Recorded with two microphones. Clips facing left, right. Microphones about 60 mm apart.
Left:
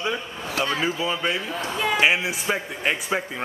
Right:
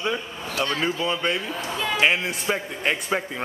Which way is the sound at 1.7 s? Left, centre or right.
Centre.